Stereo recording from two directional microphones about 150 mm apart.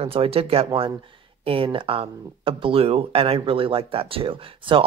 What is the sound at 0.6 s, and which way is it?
Speech, 30° right (ahead or behind).